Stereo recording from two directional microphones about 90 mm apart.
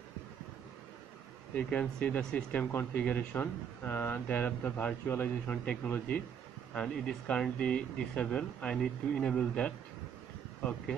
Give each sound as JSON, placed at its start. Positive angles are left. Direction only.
{"t": 1.5, "sound": "speech", "side_deg": 15}